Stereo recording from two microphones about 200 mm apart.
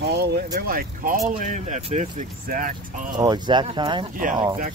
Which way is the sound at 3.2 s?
20° right (ahead or behind).